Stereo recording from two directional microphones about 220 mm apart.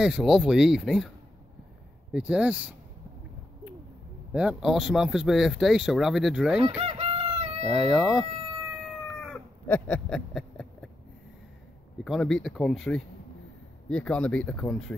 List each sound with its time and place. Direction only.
0.0 s speech: 5° right (ahead or behind)
2.1 s speech: 5° right (ahead or behind)
4.3 s speech: 5° right (ahead or behind)
6.8 s chicken: 25° right (ahead or behind)
7.7 s speech: centre (ahead or behind)
9.2 s a sound: 5° left (ahead or behind)
12.0 s speech: centre (ahead or behind)